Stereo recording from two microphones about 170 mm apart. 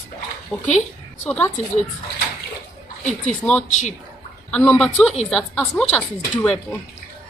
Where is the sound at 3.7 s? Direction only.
45° left (ahead or behind).